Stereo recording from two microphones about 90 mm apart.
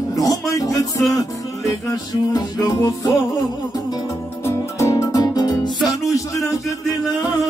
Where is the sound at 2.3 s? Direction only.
45° left (ahead or behind).